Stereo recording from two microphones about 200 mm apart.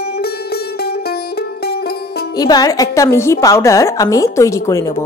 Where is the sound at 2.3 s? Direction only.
20° left (ahead or behind).